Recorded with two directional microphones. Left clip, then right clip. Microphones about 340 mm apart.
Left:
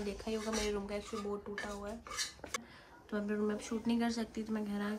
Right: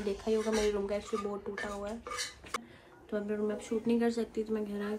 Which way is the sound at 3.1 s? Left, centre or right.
Centre.